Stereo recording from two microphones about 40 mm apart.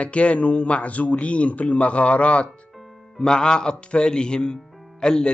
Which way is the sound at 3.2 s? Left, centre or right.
Left.